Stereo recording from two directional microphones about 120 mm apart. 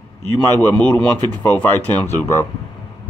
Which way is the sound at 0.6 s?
15° left (ahead or behind).